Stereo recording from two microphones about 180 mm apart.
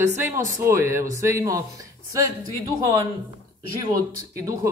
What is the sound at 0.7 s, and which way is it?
Speech, 15° right (ahead or behind).